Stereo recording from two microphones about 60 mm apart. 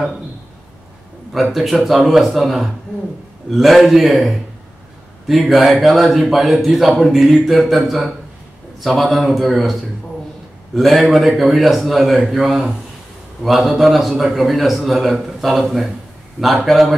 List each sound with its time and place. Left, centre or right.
1.3 s a man's voice: centre